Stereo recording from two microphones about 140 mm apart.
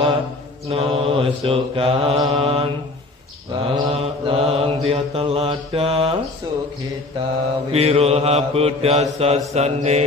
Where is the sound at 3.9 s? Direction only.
45° right (ahead or behind).